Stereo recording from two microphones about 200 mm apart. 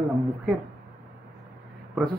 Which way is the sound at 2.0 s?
Centre (ahead or behind).